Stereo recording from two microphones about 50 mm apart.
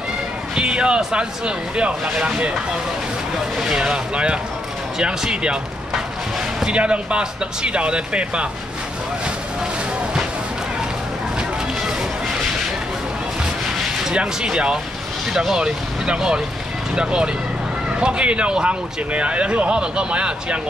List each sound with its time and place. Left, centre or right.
0.6 s speech: centre
3.7 s speech: centre
14.1 s speech: centre